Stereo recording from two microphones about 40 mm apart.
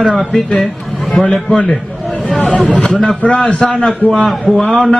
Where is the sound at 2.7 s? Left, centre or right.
Left.